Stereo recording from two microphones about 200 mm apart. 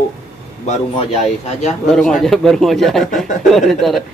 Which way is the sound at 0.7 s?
35° left (ahead or behind).